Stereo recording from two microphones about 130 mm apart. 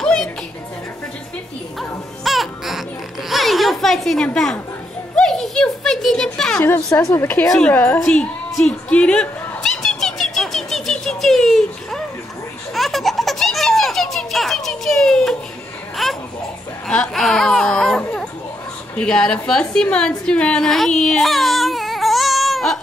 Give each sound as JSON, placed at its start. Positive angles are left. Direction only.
{"t": 0.0, "sound": "music", "side_deg": 5}
{"t": 1.8, "sound": "music", "side_deg": 0}
{"t": 3.3, "sound": "a sound", "side_deg": 0}
{"t": 6.6, "sound": "a woman's voice", "side_deg": 20}
{"t": 8.0, "sound": "dog", "side_deg": 5}
{"t": 12.7, "sound": "baby laughter", "side_deg": 0}
{"t": 16.0, "sound": "a sound", "side_deg": 0}
{"t": 18.9, "sound": "a woman's voice", "side_deg": 5}